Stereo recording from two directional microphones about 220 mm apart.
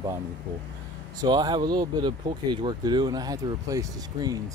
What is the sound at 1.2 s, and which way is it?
Speech, 20° right (ahead or behind).